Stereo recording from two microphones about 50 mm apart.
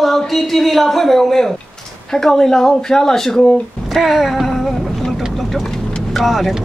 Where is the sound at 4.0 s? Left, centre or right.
Centre.